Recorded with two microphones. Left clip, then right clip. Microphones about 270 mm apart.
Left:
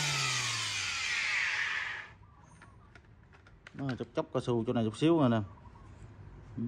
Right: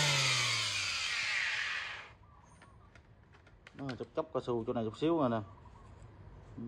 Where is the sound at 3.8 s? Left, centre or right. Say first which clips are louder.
Left 4 dB; left.